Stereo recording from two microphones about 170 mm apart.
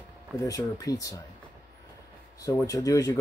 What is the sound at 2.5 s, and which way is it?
Speech, 20° left (ahead or behind).